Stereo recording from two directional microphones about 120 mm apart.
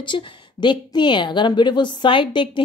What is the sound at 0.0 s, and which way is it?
A woman's voice, 40° left (ahead or behind).